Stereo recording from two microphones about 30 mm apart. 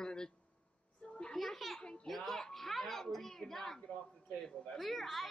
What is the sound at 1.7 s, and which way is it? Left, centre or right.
Speech, left.